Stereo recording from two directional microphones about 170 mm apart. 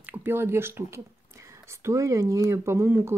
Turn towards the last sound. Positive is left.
turn(degrees=-15)  # may be behind; listen again after turning